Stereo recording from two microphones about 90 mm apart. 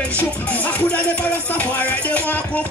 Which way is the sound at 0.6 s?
15° left (ahead or behind).